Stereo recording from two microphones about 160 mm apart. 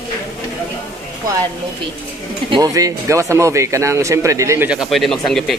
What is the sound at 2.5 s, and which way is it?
Speech, 20° right (ahead or behind).